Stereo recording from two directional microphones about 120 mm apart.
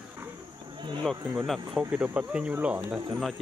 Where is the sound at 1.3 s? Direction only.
Centre (ahead or behind).